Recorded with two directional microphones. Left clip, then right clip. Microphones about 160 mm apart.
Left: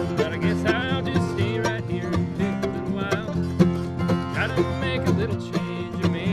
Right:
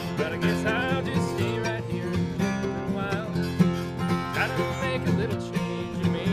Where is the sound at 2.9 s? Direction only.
30° left (ahead or behind).